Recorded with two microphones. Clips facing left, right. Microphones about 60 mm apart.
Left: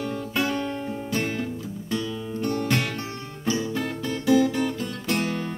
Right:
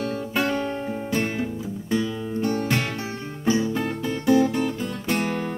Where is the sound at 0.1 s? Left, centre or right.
Centre.